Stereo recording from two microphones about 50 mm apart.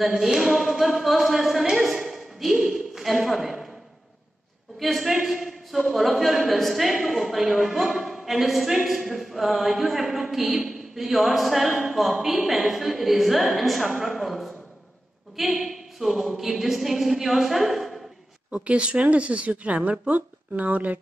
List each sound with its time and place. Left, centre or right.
0.0 s a woman's voice: centre
2.6 s a sound: centre
4.7 s a man's voice: centre
18.7 s a woman's voice: right